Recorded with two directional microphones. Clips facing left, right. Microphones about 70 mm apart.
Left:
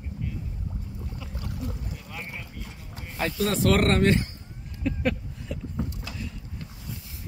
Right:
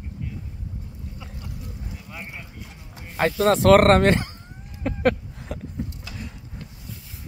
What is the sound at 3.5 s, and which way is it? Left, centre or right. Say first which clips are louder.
Speech: right 9 dB; right.